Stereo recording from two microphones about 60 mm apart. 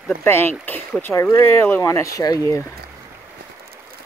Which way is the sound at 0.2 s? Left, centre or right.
Left.